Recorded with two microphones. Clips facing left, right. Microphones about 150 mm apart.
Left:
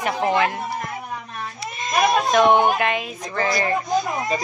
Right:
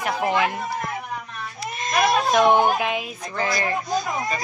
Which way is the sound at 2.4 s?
15° left (ahead or behind).